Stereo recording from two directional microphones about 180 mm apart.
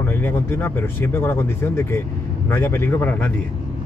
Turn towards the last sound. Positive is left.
turn(degrees=10)  # may be behind; listen again after turning